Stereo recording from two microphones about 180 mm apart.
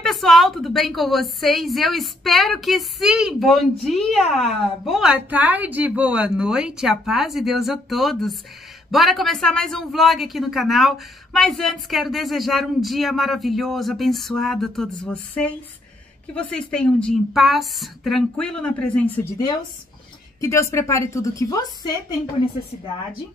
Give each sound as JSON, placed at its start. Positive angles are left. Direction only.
{"t": 0.0, "sound": "a woman's voice", "side_deg": 0}